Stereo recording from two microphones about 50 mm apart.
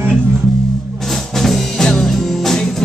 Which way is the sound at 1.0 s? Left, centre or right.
Centre.